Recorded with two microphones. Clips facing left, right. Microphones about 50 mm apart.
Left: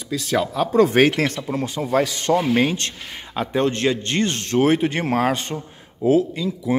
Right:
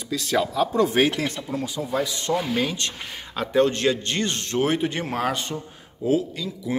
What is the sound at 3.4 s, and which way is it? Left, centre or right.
Speech, left.